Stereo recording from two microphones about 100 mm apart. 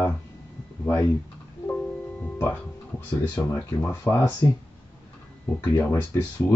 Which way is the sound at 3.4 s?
15° left (ahead or behind).